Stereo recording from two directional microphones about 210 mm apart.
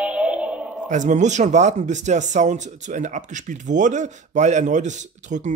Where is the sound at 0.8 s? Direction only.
35° right (ahead or behind).